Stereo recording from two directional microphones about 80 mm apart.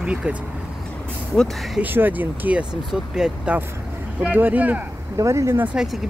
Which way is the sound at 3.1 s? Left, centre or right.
Centre.